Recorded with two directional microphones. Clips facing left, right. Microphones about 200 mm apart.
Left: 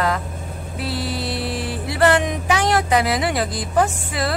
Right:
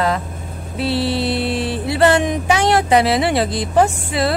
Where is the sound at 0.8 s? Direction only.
30° right (ahead or behind).